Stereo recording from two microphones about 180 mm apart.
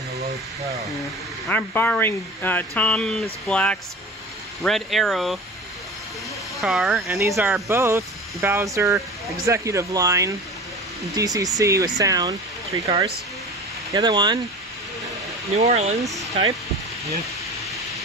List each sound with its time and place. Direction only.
1.5 s speech: 10° left (ahead or behind)
6.6 s speech: 5° right (ahead or behind)
7.2 s speech: 15° right (ahead or behind)
12.8 s speech: 30° right (ahead or behind)
15.5 s speech: 35° right (ahead or behind)